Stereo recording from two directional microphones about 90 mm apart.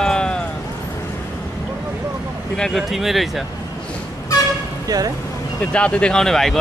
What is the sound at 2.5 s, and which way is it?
Speech, 5° left (ahead or behind).